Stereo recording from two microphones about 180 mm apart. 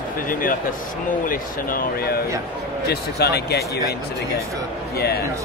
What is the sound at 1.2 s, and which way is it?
Speech, 50° left (ahead or behind).